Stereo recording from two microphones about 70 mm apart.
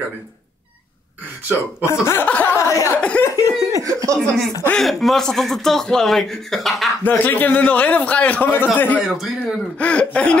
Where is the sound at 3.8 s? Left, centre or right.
Right.